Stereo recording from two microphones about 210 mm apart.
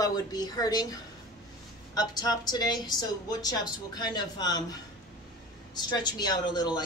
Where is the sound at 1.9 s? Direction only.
20° left (ahead or behind).